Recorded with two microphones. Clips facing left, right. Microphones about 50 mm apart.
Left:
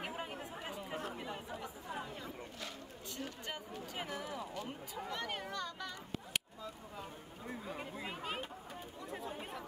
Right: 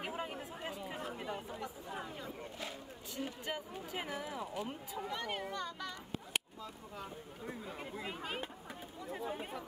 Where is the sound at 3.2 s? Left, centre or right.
Centre.